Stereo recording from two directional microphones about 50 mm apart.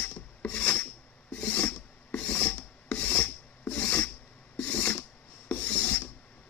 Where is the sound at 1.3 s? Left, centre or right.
Left.